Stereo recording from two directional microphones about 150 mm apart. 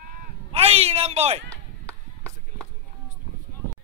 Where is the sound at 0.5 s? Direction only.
45° right (ahead or behind).